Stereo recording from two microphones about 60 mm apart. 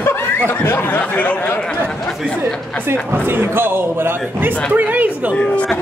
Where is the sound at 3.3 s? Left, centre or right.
Right.